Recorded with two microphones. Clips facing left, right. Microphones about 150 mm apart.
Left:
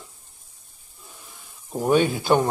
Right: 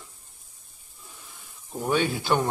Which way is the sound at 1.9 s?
15° left (ahead or behind).